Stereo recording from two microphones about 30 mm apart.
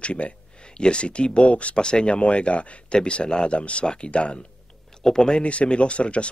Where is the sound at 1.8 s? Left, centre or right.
Left.